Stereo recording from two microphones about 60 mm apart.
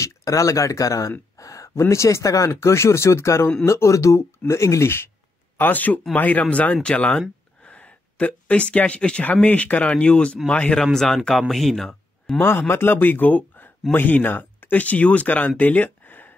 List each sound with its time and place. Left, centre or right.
0.0 s speech: left
5.6 s speech: left; by 11.9 s centre
12.4 s speech: left